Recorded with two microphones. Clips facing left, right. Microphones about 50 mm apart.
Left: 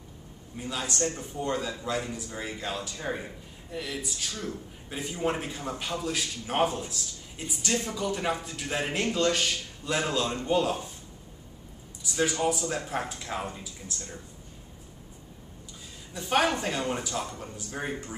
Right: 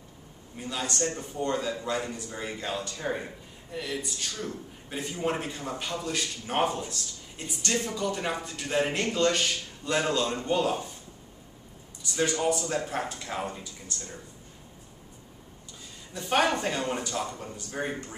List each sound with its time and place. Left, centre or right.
0.6 s a man's voice: centre
12.0 s a man's voice: centre
16.1 s a man's voice: centre